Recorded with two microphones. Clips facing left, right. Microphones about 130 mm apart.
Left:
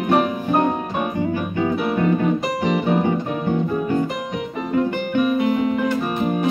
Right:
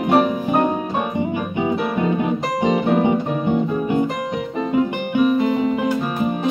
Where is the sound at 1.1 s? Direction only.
20° right (ahead or behind).